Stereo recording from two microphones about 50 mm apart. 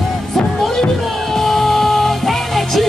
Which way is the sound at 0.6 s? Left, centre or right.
Centre.